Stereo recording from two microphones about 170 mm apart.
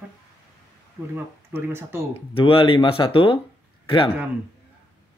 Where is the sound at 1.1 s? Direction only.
15° right (ahead or behind).